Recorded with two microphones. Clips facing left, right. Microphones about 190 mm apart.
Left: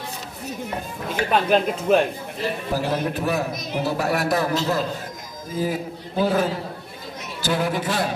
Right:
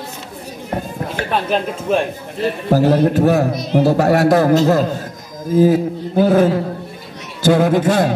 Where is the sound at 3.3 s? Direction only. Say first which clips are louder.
Right 9 dB; 55° right (ahead or behind).